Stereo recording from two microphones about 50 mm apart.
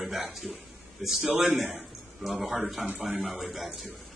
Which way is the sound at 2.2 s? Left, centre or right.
Centre.